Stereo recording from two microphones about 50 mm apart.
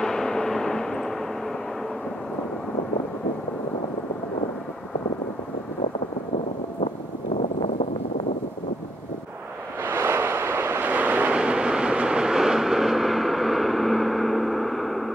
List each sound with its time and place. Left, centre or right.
0.0 s a sound: centre
9.8 s waves: right
10.8 s vehicle: right
11.3 s vehicle: centre